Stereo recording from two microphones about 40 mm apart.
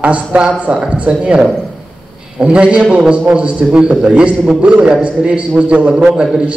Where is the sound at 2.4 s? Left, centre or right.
Right.